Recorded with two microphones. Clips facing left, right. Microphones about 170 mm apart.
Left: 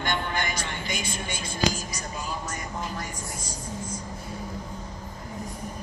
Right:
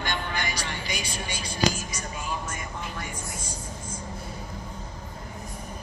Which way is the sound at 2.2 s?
40° left (ahead or behind).